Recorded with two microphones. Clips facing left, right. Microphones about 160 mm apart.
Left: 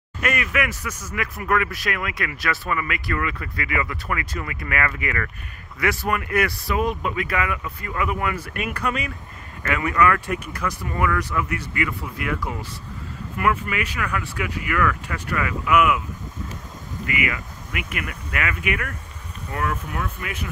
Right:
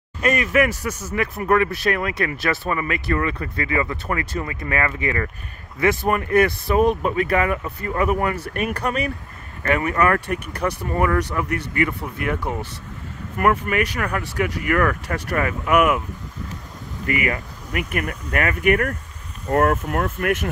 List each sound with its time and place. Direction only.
0.2 s speech: 35° right (ahead or behind)
9.6 s speech: 35° right (ahead or behind)
13.4 s speech: 45° right (ahead or behind)
17.0 s speech: 40° right (ahead or behind); by 20.3 s 55° right (ahead or behind)